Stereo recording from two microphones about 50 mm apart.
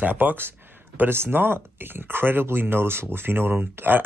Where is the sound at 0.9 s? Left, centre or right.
Right.